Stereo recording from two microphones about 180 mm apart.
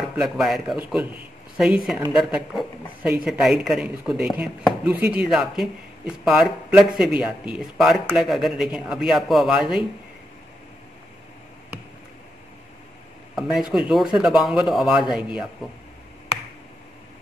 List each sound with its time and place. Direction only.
0.1 s speech: 5° right (ahead or behind)
13.4 s speech: centre (ahead or behind)